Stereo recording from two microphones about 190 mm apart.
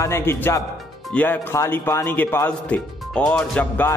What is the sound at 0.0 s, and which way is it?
Speech, 15° left (ahead or behind).